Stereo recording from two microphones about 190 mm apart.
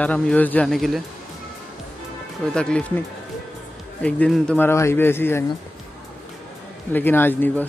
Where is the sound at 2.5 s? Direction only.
5° left (ahead or behind).